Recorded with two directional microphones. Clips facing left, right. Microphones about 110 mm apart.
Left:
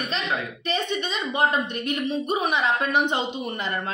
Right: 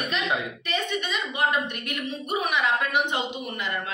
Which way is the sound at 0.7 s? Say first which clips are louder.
Left 3 dB; 30° left (ahead or behind).